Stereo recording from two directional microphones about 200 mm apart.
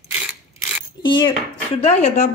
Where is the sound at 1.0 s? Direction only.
25° left (ahead or behind).